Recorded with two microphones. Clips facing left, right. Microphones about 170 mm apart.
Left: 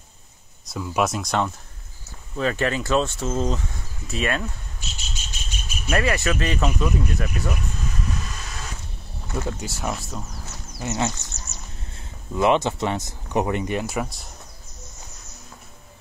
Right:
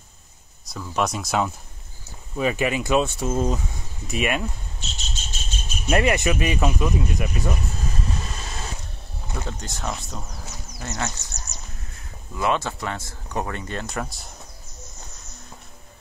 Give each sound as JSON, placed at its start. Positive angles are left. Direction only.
{"t": 0.7, "sound": "speech", "side_deg": 5}
{"t": 4.7, "sound": "cricket", "side_deg": 10}
{"t": 5.9, "sound": "speech", "side_deg": -20}
{"t": 8.0, "sound": "vehicle", "side_deg": -30}
{"t": 9.5, "sound": "speech", "side_deg": 5}
{"t": 11.0, "sound": "speech", "side_deg": 20}
{"t": 11.3, "sound": "a sound", "side_deg": -15}
{"t": 11.9, "sound": "speech", "side_deg": 20}